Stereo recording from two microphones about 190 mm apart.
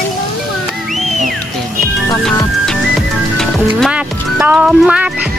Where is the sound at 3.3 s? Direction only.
Centre (ahead or behind).